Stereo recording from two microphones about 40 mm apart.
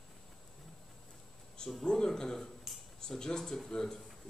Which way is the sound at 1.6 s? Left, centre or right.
Left.